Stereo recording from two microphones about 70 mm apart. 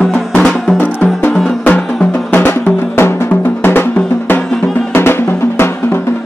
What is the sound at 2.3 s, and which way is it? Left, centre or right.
Music, left.